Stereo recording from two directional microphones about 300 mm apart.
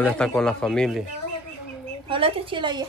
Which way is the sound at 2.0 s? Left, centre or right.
Centre.